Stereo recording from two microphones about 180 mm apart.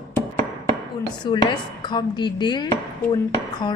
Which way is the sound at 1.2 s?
25° left (ahead or behind).